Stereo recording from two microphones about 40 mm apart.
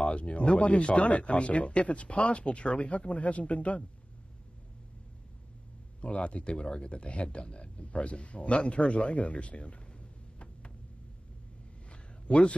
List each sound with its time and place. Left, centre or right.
0.0 s speech: left
5.9 s speech: left
11.9 s a sound: left